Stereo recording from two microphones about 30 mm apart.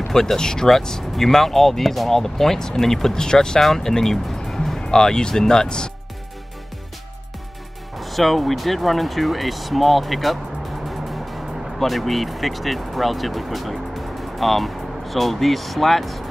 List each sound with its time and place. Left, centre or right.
0.1 s speech: centre
4.7 s speech: left
8.0 s speech: centre
10.9 s music: centre
11.8 s speech: centre